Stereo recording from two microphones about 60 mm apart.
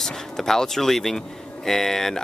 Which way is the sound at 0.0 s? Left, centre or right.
Centre.